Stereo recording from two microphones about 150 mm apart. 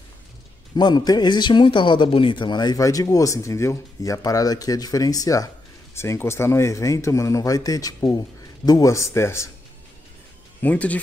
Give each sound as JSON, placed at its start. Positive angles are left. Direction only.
{"t": 0.7, "sound": "a man's voice", "side_deg": 30}
{"t": 10.6, "sound": "speech", "side_deg": 10}